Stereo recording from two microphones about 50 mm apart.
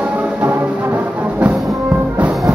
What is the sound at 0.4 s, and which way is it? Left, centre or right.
Music, right.